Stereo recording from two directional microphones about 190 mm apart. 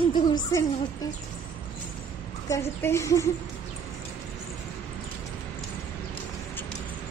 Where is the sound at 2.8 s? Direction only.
15° left (ahead or behind).